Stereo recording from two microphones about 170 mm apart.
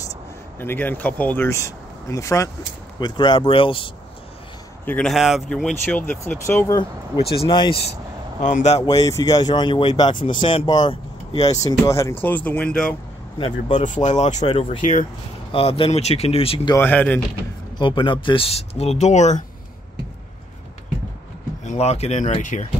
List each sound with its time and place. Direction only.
0.6 s speech: 10° left (ahead or behind); by 3.9 s 30° left (ahead or behind)
4.8 s speech: 5° left (ahead or behind)
7.4 s speech: 30° left (ahead or behind)
8.4 s speech: 45° left (ahead or behind)
8.8 s speech: 20° left (ahead or behind)
13.4 s speech: 45° left (ahead or behind)
14.4 s speech: 30° left (ahead or behind)
16.7 s speech: 10° left (ahead or behind)
17.7 s speech: 30° left (ahead or behind)
21.6 s speech: 40° left (ahead or behind)